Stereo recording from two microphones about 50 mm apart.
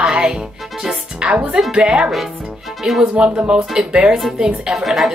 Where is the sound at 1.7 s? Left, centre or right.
Right.